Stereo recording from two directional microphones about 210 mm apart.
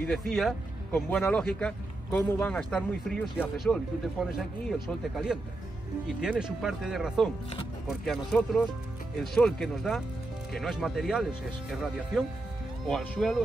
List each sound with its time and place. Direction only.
0.0 s speech: centre (ahead or behind)